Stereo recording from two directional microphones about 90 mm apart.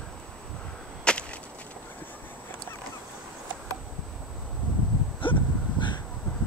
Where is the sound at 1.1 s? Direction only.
10° left (ahead or behind).